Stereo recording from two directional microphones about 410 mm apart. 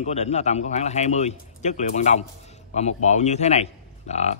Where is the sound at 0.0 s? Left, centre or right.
Centre.